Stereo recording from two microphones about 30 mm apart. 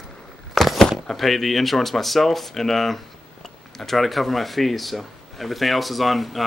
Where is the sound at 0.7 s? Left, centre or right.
Centre.